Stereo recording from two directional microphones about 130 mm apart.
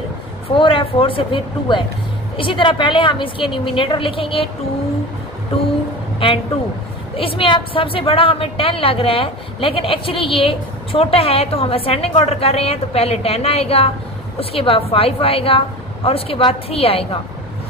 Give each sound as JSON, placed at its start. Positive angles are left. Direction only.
{"t": 0.6, "sound": "a woman's voice", "side_deg": 45}
{"t": 6.2, "sound": "a woman's voice", "side_deg": 45}